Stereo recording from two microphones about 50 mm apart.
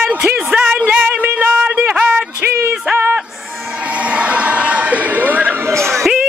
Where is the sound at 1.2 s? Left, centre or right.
Right.